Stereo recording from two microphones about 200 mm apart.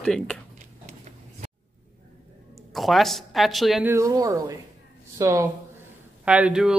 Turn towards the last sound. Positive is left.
turn(degrees=-5)  # may be behind; listen again after turning